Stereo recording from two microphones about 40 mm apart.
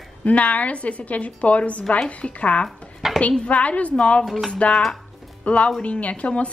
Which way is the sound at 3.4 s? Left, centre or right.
Left.